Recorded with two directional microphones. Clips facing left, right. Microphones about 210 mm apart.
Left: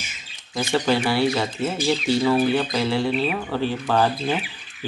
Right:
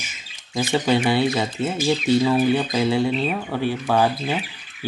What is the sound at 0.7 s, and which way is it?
Speech, 20° right (ahead or behind).